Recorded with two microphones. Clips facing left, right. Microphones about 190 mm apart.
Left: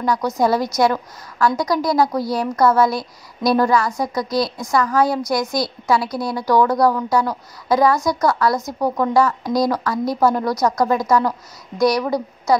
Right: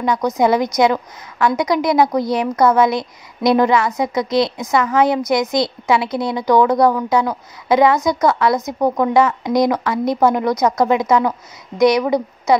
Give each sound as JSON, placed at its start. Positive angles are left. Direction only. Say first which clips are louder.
{"t": 0.0, "sound": "a woman's voice", "louder": "right 2 dB", "side_deg": -20}